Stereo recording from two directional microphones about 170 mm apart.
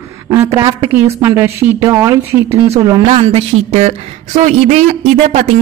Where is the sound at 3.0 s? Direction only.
40° right (ahead or behind).